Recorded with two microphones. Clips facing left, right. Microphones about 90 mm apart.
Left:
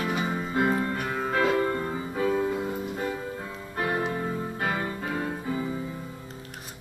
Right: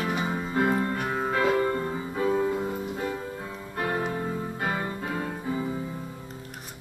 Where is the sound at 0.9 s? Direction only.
20° right (ahead or behind).